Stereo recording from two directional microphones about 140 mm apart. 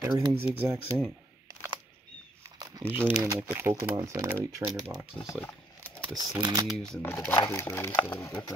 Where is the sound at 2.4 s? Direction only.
25° right (ahead or behind).